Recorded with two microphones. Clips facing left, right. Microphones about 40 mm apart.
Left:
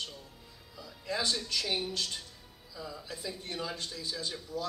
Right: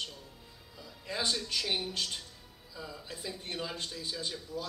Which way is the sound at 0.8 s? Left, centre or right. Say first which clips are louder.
Left 2 dB; centre.